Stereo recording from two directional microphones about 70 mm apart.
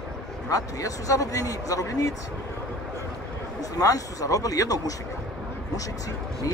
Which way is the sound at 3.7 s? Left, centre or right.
Left.